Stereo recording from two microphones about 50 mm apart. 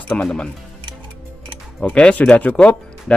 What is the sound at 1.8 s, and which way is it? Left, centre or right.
Speech, left.